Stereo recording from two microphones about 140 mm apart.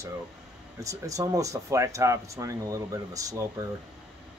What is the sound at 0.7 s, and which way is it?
Speech, 25° right (ahead or behind).